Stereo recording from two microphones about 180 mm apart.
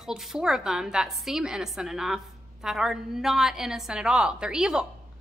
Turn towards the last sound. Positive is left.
turn(degrees=-5)  # may be behind; listen again after turning